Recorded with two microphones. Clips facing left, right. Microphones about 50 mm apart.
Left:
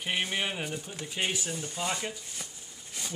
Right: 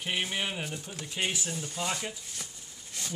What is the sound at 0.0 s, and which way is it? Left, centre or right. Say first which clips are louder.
Speech: left 1 dB; centre.